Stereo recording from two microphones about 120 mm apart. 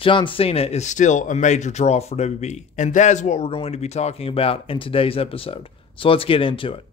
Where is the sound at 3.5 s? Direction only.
55° left (ahead or behind).